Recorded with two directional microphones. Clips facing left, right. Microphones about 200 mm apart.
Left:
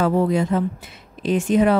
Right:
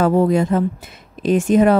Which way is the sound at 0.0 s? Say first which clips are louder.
Right 4 dB; 50° right (ahead or behind).